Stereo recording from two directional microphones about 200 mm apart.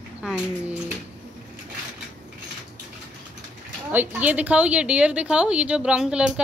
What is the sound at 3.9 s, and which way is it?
A woman's voice, 10° right (ahead or behind).